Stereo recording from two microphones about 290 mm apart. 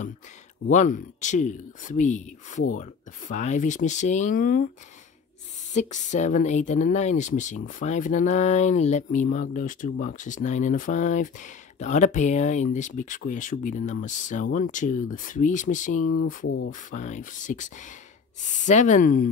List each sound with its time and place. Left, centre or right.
0.7 s speech: left
5.7 s speech: left